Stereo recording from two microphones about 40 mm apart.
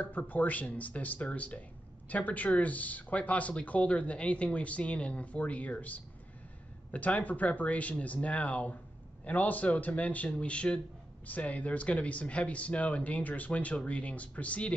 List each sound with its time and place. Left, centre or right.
0.0 s speech: left
11.2 s speech: left